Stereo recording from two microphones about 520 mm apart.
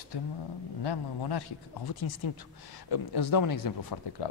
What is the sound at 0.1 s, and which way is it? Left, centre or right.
Speech, left.